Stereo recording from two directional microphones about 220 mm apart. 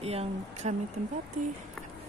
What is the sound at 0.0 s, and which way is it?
Speech, 25° right (ahead or behind).